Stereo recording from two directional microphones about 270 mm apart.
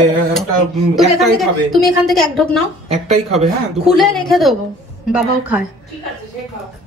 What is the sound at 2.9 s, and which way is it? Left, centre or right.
Speech, right.